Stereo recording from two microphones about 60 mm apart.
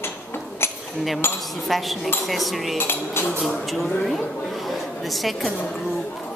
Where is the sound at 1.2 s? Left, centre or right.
Left.